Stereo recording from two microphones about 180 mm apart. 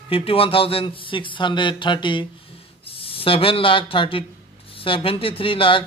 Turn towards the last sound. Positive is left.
turn(degrees=30)  # may be behind; listen again after turning